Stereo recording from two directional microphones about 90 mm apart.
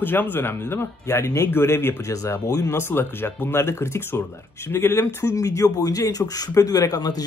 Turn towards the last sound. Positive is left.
turn(degrees=45)  # may be behind; listen again after turning